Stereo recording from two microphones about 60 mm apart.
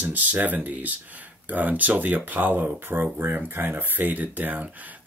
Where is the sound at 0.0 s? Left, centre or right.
Right.